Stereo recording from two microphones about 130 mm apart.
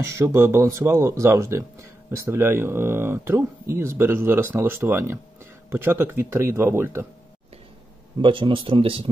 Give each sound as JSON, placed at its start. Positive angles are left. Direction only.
{"t": 0.0, "sound": "speech", "side_deg": -20}
{"t": 8.2, "sound": "speech", "side_deg": -40}